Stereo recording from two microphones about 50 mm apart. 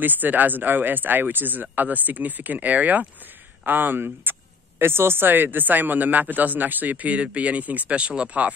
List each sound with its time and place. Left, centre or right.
0.0 s speech: right